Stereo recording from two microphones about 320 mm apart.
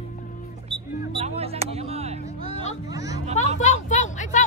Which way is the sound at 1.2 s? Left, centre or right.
Centre.